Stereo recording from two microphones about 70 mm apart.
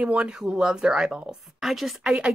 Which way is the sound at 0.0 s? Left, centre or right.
Centre.